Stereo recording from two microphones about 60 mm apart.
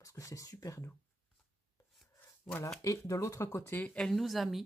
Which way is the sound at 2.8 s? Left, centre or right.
Left.